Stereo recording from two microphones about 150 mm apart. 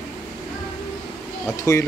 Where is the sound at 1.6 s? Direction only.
20° left (ahead or behind).